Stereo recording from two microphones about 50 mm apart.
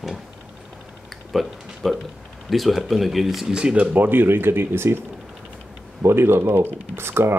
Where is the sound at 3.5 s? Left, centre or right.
Centre.